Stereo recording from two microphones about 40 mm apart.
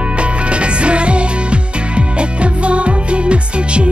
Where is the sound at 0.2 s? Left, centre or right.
Right.